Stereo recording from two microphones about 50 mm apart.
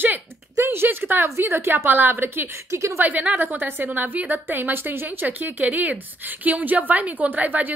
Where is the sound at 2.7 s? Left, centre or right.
Right.